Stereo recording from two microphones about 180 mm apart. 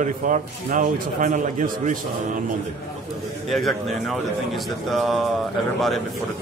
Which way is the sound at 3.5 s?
Centre (ahead or behind).